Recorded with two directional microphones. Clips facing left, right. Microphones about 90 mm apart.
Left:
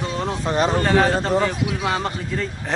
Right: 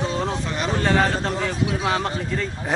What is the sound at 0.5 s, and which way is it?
Speech, 35° left (ahead or behind).